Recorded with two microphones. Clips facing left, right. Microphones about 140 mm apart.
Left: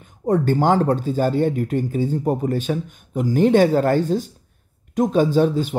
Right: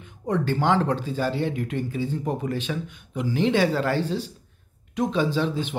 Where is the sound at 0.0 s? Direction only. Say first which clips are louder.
Left 6 dB; 45° left (ahead or behind).